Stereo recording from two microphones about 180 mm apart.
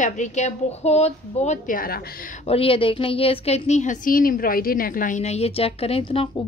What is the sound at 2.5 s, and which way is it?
A woman's voice, 30° left (ahead or behind).